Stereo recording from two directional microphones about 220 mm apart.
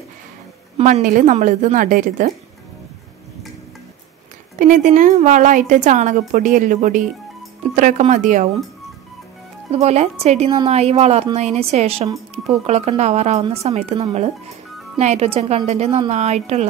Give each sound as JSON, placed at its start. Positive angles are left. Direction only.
{"t": 0.7, "sound": "a woman's voice", "side_deg": -30}
{"t": 4.6, "sound": "a woman's voice", "side_deg": -35}
{"t": 9.7, "sound": "speech", "side_deg": -30}